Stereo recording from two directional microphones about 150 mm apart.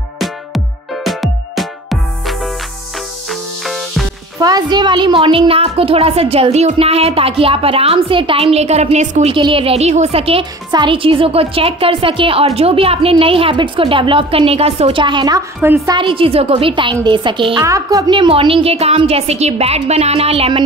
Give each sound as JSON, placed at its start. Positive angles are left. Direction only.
{"t": 1.0, "sound": "music", "side_deg": 0}
{"t": 4.4, "sound": "speech", "side_deg": -25}
{"t": 9.3, "sound": "speech", "side_deg": -35}
{"t": 15.6, "sound": "a woman's voice", "side_deg": -15}
{"t": 15.9, "sound": "speech", "side_deg": -35}
{"t": 17.6, "sound": "speech", "side_deg": -20}